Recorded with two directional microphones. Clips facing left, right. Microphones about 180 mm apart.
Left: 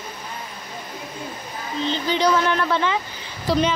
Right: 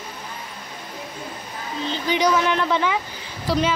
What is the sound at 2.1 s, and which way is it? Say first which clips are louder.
Speech: right 1 dB; 15° right (ahead or behind).